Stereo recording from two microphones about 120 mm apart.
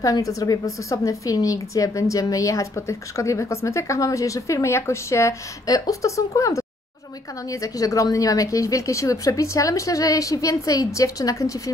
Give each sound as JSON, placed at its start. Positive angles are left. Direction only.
{"t": 0.0, "sound": "a woman's voice", "side_deg": 30}
{"t": 7.6, "sound": "a woman's voice", "side_deg": 30}